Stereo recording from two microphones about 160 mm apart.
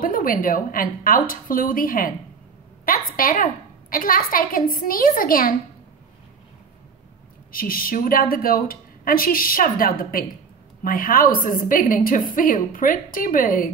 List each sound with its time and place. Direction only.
0.0 s a woman's voice: 60° left (ahead or behind)
7.5 s a woman's voice: 65° left (ahead or behind)